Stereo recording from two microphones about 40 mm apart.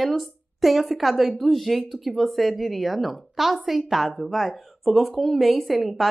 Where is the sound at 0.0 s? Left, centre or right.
Centre.